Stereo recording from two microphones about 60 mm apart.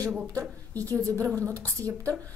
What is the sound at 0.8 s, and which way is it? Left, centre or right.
A woman's voice, right.